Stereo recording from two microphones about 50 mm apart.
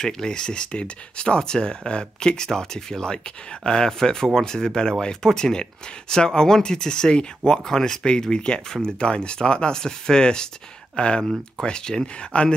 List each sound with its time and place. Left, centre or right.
0.0 s speech: centre